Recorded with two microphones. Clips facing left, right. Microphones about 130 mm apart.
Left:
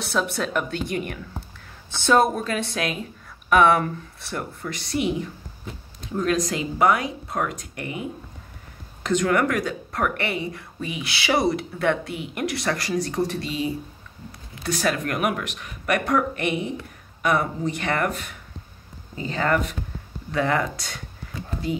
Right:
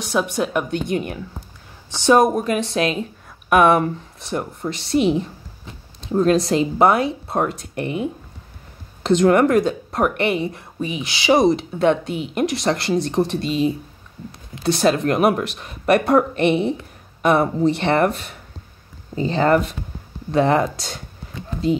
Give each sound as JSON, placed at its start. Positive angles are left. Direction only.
{"t": 0.0, "sound": "a woman's voice", "side_deg": -15}
{"t": 9.0, "sound": "speech", "side_deg": -30}